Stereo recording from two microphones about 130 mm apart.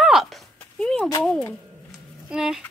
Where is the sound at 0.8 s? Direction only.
10° left (ahead or behind).